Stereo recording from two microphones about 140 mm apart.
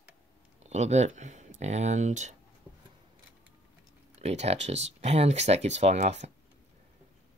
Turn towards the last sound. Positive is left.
turn(degrees=-55)  # may be behind; listen again after turning